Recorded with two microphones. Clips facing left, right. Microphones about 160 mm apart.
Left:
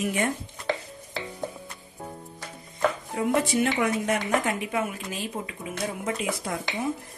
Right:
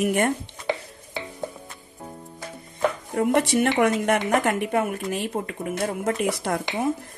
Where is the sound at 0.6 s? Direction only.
Centre (ahead or behind).